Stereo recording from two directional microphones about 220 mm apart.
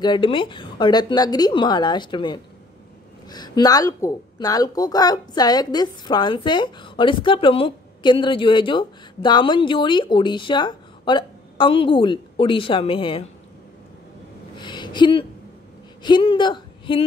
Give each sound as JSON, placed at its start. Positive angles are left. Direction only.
{"t": 0.0, "sound": "speech", "side_deg": 20}
{"t": 14.6, "sound": "a sound", "side_deg": 20}
{"t": 16.0, "sound": "speech", "side_deg": 20}